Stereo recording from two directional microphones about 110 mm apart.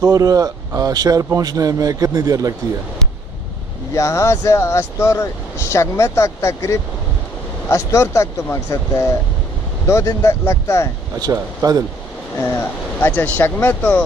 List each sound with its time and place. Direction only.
0.0 s speech: 35° right (ahead or behind)
3.9 s speech: 25° left (ahead or behind)
11.1 s speech: 35° right (ahead or behind)
12.4 s speech: 20° left (ahead or behind)